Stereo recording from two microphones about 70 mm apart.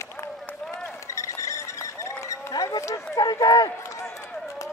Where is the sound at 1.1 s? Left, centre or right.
Left.